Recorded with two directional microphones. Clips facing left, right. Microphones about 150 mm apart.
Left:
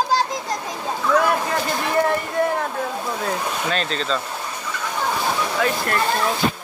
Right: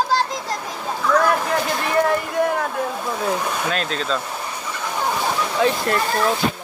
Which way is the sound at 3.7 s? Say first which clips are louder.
Even; 5° right (ahead or behind).